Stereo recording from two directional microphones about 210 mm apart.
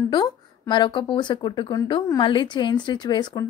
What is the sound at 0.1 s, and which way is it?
Speech, 20° left (ahead or behind).